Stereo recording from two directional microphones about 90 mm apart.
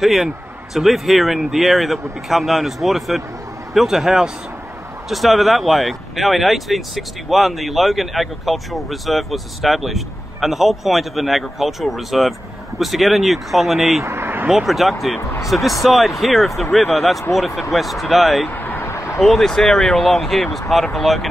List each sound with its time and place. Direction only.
0.0 s speech: 5° right (ahead or behind)
14.0 s speech: 25° right (ahead or behind)
14.5 s speech: 5° right (ahead or behind)
18.5 s vehicle: 20° left (ahead or behind)
19.1 s speech: 5° left (ahead or behind)